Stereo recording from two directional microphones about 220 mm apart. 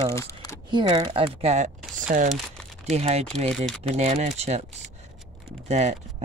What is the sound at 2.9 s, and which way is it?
Speech, 30° right (ahead or behind).